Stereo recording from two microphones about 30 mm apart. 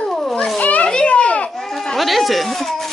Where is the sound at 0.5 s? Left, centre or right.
Left.